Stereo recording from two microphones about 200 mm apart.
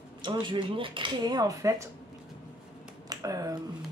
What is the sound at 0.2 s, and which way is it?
Speech, 25° right (ahead or behind).